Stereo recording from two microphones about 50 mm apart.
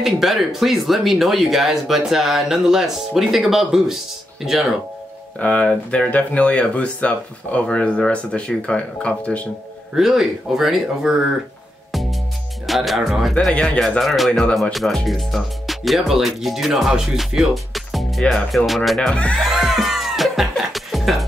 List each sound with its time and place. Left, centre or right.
0.0 s speech: centre
5.4 s speech: left
9.9 s speech: centre
11.9 s music: centre
12.6 s speech: centre
13.7 s speech: centre
14.0 s speech: centre
18.9 s speech: centre
19.5 s music: centre